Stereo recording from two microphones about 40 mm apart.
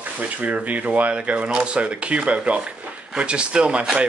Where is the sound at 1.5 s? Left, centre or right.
Right.